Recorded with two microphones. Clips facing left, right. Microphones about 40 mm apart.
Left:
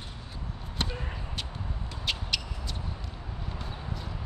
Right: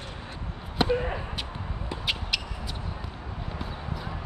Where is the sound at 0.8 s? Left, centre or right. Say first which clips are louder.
Right 11 dB; right.